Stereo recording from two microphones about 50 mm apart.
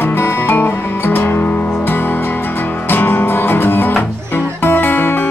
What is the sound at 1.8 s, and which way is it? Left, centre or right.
Music, left.